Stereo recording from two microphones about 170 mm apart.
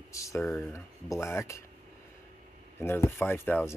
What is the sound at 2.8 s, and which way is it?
Speech, 15° left (ahead or behind).